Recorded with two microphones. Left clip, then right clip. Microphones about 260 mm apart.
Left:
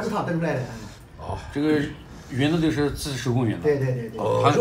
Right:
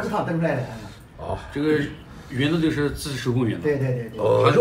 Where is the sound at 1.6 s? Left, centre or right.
Left.